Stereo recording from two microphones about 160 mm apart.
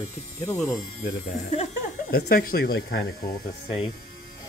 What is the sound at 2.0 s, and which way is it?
Speech, 70° left (ahead or behind).